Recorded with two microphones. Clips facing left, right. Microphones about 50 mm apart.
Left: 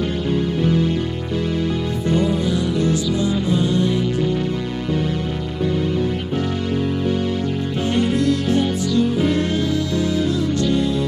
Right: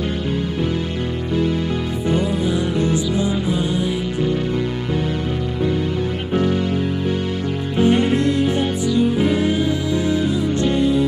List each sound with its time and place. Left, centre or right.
2.0 s music: centre
7.8 s music: right